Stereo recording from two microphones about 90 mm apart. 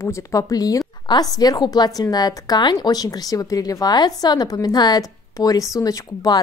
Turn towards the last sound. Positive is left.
turn(degrees=40)  # may be behind; listen again after turning